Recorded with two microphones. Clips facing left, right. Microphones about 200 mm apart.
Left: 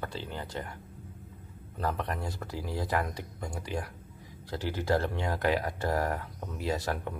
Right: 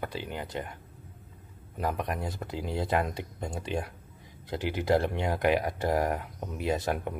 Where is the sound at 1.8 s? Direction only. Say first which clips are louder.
Right 2 dB; 15° right (ahead or behind).